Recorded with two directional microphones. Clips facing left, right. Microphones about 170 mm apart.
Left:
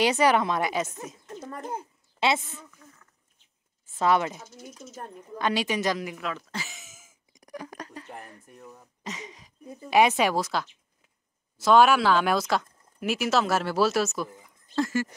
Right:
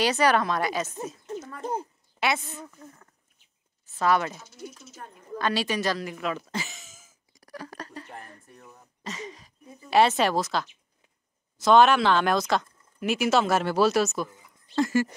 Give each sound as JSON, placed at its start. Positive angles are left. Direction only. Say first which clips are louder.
{"t": 0.0, "sound": "a woman's voice", "louder": "left 1 dB", "side_deg": 20}
{"t": 1.6, "sound": "speech", "louder": "right 4 dB", "side_deg": -30}
{"t": 2.1, "sound": "a sound", "louder": "left 2 dB", "side_deg": 25}
{"t": 2.8, "sound": "a sound", "louder": "right 7 dB", "side_deg": -40}
{"t": 4.0, "sound": "a woman's voice", "louder": "left 1 dB", "side_deg": 20}
{"t": 4.4, "sound": "speech", "louder": "right 2 dB", "side_deg": 45}
{"t": 5.4, "sound": "a woman's voice", "louder": "even", "side_deg": 20}
{"t": 6.3, "sound": "speech", "louder": "right 4 dB", "side_deg": 0}
{"t": 6.7, "sound": "a sound", "louder": "even", "side_deg": 10}
{"t": 9.0, "sound": "a woman's voice", "louder": "right 2 dB", "side_deg": 15}
{"t": 14.9, "sound": "speech", "louder": "right 4 dB", "side_deg": -15}